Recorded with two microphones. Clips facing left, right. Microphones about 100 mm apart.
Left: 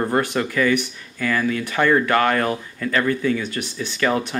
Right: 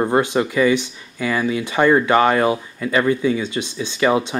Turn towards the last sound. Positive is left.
turn(degrees=-15)  # may be behind; listen again after turning